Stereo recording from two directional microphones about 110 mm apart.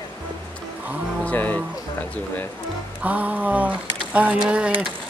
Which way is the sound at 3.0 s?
15° right (ahead or behind).